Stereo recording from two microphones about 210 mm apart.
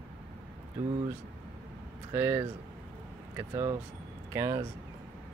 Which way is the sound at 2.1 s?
10° right (ahead or behind).